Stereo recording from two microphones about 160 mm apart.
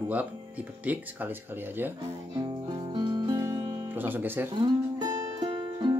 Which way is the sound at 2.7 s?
25° right (ahead or behind).